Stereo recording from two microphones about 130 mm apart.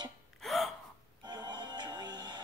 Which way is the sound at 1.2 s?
35° right (ahead or behind).